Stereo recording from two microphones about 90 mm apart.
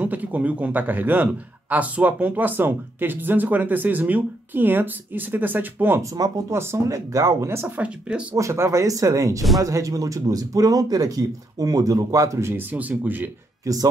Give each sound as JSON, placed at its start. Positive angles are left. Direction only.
{"t": 0.0, "sound": "speech", "side_deg": -20}
{"t": 5.9, "sound": "speech", "side_deg": -45}
{"t": 6.5, "sound": "speech", "side_deg": -30}
{"t": 8.1, "sound": "speech", "side_deg": -10}
{"t": 8.4, "sound": "speech", "side_deg": -35}
{"t": 12.7, "sound": "speech", "side_deg": -20}
{"t": 13.7, "sound": "speech", "side_deg": -35}